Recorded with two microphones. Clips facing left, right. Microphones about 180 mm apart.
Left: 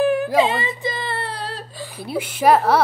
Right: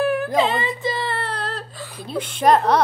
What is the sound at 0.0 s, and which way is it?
Whimper, 20° left (ahead or behind).